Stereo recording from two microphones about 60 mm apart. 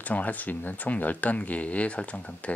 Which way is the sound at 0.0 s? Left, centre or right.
Left.